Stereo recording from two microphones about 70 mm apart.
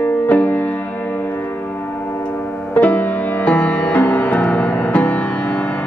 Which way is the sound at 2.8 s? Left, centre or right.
Left.